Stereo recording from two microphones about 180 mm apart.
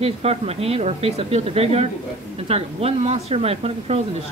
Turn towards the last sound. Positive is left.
turn(degrees=-35)  # may be behind; listen again after turning